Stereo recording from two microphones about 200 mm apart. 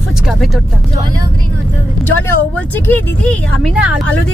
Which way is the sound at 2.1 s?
10° left (ahead or behind).